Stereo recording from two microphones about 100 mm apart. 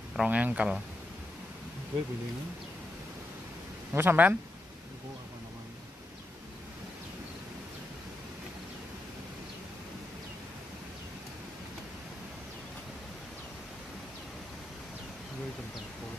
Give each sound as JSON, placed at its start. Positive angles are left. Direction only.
{"t": 0.1, "sound": "speech", "side_deg": -10}
{"t": 3.9, "sound": "speech", "side_deg": -20}